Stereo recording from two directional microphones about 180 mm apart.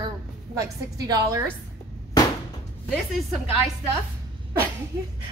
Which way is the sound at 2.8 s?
Centre (ahead or behind).